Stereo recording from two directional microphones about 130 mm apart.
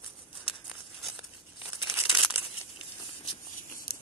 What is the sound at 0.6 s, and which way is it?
Tearing, 5° right (ahead or behind).